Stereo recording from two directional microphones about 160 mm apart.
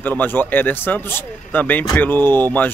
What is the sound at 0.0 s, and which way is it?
Speech, 10° left (ahead or behind).